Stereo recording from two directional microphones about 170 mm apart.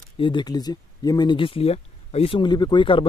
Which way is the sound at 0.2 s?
25° left (ahead or behind).